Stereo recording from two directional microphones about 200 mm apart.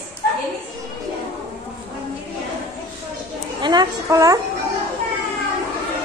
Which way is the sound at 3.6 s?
20° right (ahead or behind).